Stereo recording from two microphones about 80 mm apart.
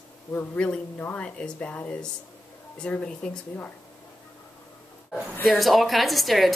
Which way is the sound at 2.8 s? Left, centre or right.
Centre.